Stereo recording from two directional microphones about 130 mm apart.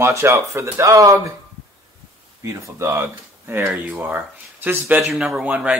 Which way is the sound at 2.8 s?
20° right (ahead or behind).